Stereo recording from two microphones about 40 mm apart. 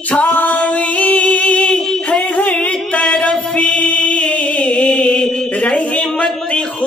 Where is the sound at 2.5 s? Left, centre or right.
Left.